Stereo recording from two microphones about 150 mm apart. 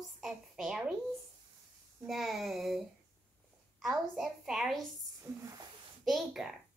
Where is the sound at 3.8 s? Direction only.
Centre (ahead or behind).